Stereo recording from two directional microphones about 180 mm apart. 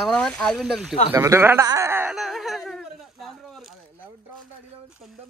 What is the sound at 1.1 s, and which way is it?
Speech, 15° right (ahead or behind).